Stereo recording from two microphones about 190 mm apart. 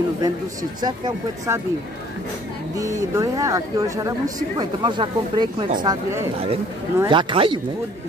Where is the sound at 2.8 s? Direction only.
15° right (ahead or behind).